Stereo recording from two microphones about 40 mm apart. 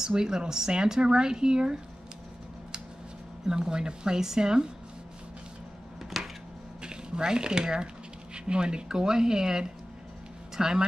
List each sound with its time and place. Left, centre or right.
0.0 s speech: centre
3.4 s a woman's voice: centre
6.0 s a sound: centre
6.8 s a woman's voice: right